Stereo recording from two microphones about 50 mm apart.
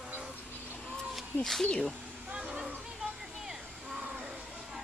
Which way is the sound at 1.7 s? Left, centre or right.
Centre.